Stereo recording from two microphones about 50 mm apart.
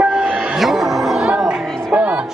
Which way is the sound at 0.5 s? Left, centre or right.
Centre.